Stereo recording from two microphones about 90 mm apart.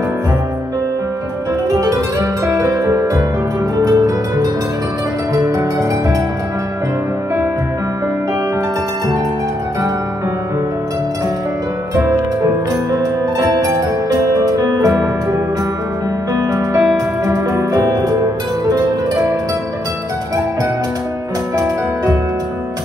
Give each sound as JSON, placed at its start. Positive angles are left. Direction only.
{"t": 1.7, "sound": "music", "side_deg": -40}
{"t": 11.9, "sound": "music", "side_deg": -35}
{"t": 16.3, "sound": "music", "side_deg": -40}